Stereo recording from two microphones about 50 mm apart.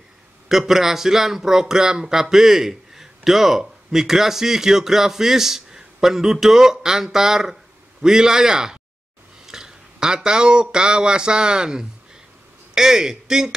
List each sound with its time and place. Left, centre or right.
0.5 s speech: centre